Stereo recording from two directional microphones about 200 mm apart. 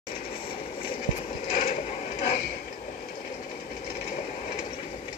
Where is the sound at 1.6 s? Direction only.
45° left (ahead or behind).